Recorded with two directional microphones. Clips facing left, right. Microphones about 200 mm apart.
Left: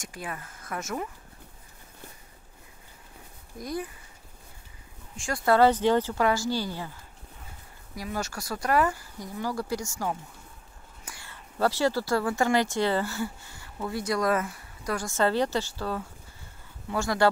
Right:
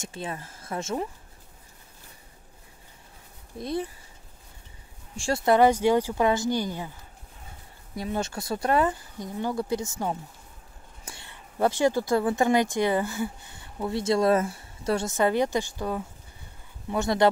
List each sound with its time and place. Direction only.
0.0 s speech: 25° right (ahead or behind)
3.5 s speech: 25° right (ahead or behind)
5.1 s speech: 25° right (ahead or behind)
7.9 s speech: 25° right (ahead or behind)
11.1 s speech: 20° right (ahead or behind)